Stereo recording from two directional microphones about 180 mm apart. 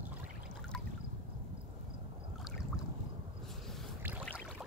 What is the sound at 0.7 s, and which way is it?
Trickle, 5° left (ahead or behind).